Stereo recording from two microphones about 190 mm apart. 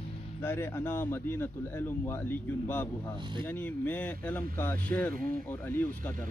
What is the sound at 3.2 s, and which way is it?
Speech, 25° right (ahead or behind).